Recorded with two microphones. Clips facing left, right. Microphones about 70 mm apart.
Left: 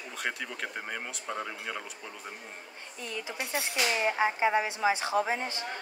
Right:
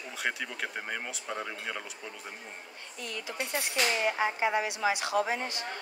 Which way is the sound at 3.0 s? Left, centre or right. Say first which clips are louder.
Even; left.